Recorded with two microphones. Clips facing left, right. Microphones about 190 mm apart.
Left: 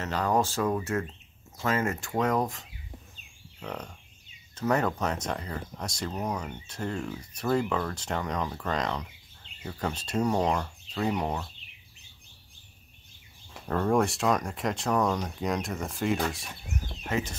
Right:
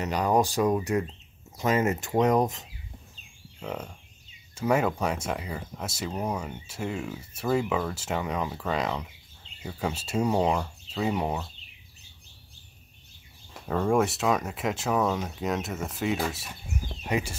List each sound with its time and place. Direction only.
0.0 s speech: 15° right (ahead or behind)
3.5 s speech: 5° right (ahead or behind)
13.5 s speech: 5° right (ahead or behind)